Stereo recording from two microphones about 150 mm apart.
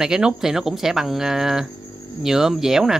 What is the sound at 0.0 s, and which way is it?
Speech, 5° right (ahead or behind).